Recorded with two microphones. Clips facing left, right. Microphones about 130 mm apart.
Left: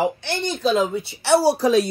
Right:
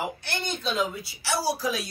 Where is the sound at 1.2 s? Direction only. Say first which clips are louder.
Left 10 dB; 60° left (ahead or behind).